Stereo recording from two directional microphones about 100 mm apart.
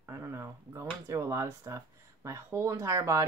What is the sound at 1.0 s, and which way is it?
Speech, 30° right (ahead or behind).